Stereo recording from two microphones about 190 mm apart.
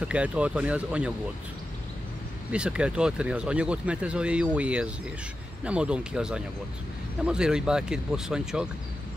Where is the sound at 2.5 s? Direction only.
5° right (ahead or behind).